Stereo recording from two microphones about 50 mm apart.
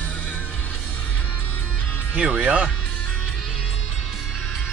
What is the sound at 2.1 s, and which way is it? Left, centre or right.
Speech, right.